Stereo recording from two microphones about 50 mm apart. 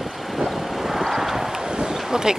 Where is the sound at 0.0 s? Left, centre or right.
Centre.